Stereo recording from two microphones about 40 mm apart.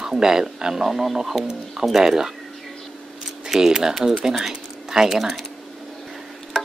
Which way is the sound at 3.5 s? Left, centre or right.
Centre.